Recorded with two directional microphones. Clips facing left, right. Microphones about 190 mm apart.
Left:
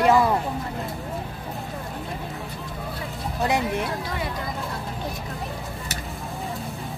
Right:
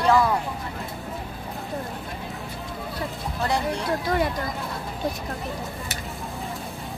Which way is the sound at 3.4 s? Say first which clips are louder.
Left 2 dB; 20° left (ahead or behind).